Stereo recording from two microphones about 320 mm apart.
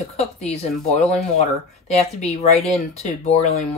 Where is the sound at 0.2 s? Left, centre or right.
Centre.